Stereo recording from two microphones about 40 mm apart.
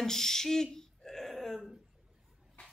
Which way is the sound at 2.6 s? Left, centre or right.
Left.